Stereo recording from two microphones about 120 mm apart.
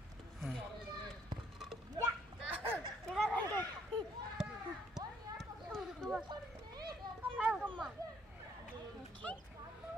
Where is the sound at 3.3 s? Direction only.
15° left (ahead or behind).